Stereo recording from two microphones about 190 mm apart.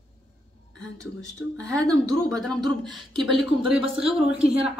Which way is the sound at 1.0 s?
15° right (ahead or behind).